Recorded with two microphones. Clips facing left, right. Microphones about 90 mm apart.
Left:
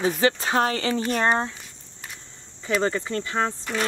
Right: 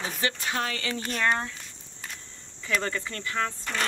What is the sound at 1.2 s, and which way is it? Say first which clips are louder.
Cricket: left 2 dB; 25° left (ahead or behind).